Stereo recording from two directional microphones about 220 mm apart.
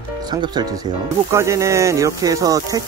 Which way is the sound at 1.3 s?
15° right (ahead or behind).